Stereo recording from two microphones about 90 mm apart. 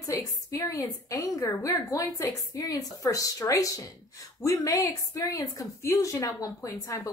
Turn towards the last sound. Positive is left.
turn(degrees=35)  # may be behind; listen again after turning